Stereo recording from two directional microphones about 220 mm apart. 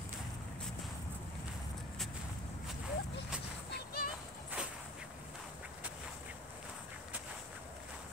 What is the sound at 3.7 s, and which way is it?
Music, 45° left (ahead or behind).